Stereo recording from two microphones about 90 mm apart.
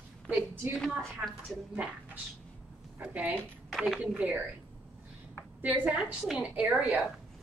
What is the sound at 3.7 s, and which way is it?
Speech, centre (ahead or behind).